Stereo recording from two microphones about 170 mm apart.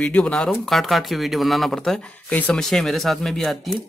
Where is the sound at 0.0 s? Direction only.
5° left (ahead or behind).